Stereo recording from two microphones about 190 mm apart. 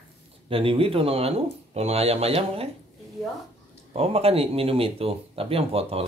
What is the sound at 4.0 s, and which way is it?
Speech, 30° right (ahead or behind).